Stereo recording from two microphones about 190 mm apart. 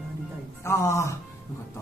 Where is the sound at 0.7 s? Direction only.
15° left (ahead or behind).